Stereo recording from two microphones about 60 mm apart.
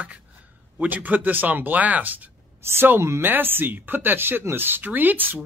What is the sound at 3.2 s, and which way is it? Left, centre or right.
Speech, right.